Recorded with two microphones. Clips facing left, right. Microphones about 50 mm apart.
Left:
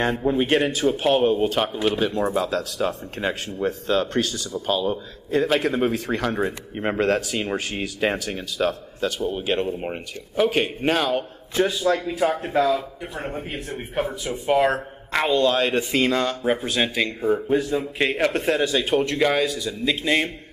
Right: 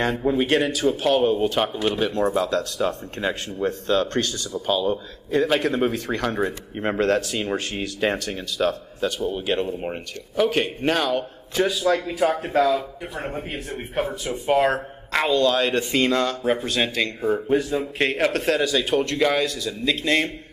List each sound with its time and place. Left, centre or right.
0.3 s a man's voice: centre
11.8 s speech: centre
15.3 s speech: centre
15.6 s speech: centre